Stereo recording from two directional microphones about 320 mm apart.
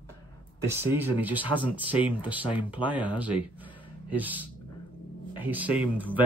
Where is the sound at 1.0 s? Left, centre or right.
Centre.